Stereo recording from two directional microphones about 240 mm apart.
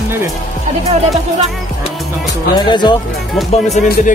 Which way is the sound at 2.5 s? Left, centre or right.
Centre.